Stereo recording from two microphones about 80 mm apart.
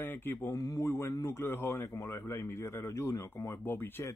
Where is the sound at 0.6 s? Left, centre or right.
Left.